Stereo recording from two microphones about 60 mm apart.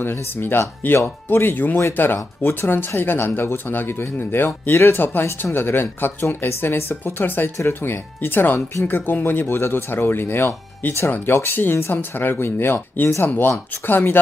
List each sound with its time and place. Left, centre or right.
0.0 s speech: left